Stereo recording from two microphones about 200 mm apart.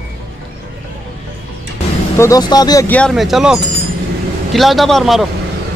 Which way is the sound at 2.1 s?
15° left (ahead or behind).